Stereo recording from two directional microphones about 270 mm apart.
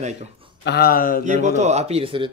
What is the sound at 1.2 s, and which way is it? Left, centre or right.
A man's voice, right.